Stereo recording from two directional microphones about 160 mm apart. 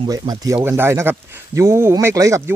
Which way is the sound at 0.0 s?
25° right (ahead or behind).